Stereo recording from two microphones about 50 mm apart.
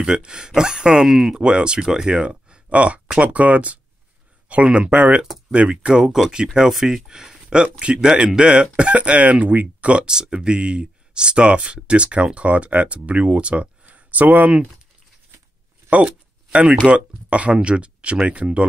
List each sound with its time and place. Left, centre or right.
0.0 s speech: centre
1.4 s speech: centre
6.7 s speech: centre; by 10.0 s right
10.0 s speech: centre; by 14.5 s right
16.8 s speech: right